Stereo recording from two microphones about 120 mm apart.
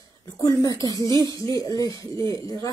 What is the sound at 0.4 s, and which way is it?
A woman's voice, 30° left (ahead or behind).